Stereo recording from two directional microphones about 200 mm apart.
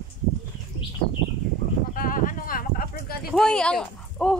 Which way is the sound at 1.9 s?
45° left (ahead or behind).